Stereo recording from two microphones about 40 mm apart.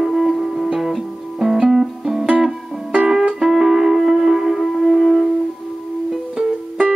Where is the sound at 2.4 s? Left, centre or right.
Right.